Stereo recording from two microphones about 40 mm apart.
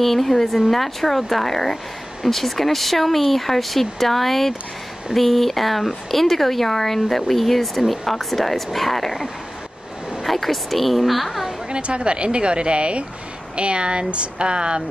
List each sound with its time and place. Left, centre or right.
0.0 s speech: centre
11.7 s speech: right